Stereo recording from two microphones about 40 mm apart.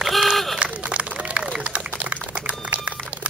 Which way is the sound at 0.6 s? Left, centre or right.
Right.